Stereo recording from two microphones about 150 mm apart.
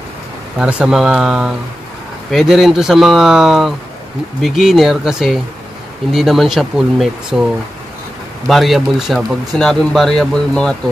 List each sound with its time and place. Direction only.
0.6 s speech: 5° right (ahead or behind)
8.5 s speech: centre (ahead or behind)